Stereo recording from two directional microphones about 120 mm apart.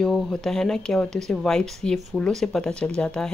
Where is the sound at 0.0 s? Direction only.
5° left (ahead or behind).